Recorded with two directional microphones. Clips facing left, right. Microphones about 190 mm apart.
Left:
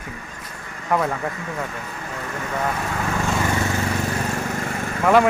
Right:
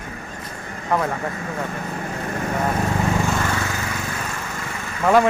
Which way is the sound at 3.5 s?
20° left (ahead or behind).